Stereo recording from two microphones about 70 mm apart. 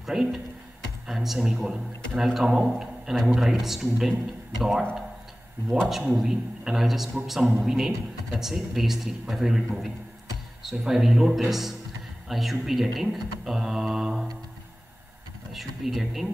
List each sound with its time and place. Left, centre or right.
0.0 s a man's voice: centre
5.9 s a man's voice: centre
15.5 s a man's voice: centre